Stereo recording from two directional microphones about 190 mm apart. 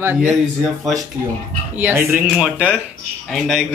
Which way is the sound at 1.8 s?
10° right (ahead or behind).